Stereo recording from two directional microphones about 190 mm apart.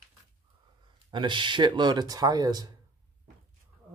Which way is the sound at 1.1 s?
25° right (ahead or behind).